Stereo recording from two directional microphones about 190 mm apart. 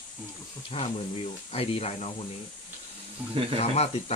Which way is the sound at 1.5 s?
30° left (ahead or behind).